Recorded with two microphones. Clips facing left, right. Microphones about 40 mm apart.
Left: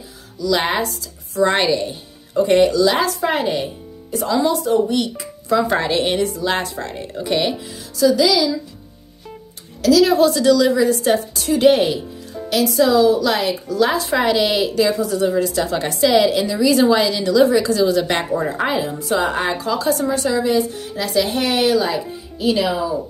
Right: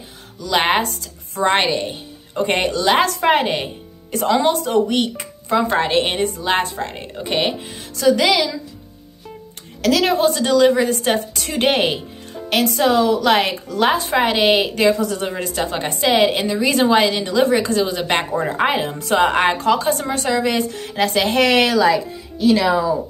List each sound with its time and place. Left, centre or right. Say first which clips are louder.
0.4 s a woman's voice: right 1 dB; right
1.4 s a woman's voice: left 1 dB; right
5.8 s a woman's voice: right 1 dB; right
7.9 s a woman's voice: even; right
9.8 s a woman's voice: left 3 dB; right
17.2 s a woman's voice: left 2 dB; right
17.9 s speech: left 1 dB; right
18.6 s a woman's voice: right 1 dB; right